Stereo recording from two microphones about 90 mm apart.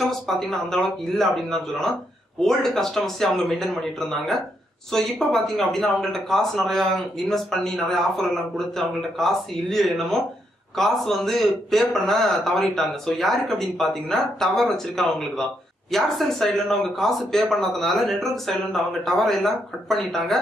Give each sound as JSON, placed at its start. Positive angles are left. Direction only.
{"t": 0.1, "sound": "speech", "side_deg": 5}